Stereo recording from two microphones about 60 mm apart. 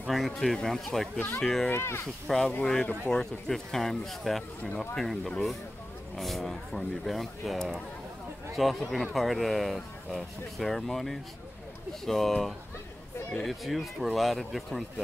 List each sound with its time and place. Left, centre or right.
0.1 s speech: centre
1.7 s speech: left
2.2 s speech: centre